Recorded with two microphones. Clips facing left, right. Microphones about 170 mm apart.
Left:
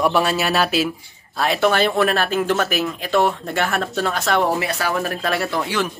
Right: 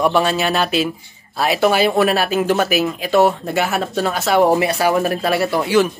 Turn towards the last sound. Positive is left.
turn(degrees=-5)  # may be behind; listen again after turning